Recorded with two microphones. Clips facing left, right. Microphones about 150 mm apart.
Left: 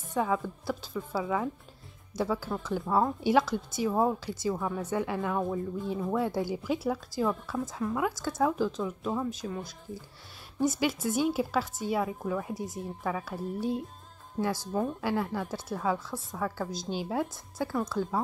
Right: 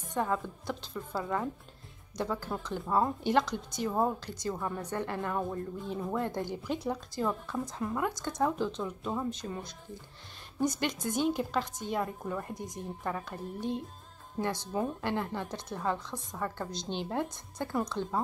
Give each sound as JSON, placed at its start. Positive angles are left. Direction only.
{"t": 0.1, "sound": "speech", "side_deg": 5}